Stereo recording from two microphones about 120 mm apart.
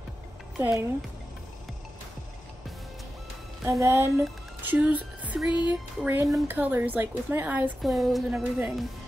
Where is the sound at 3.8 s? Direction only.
20° right (ahead or behind).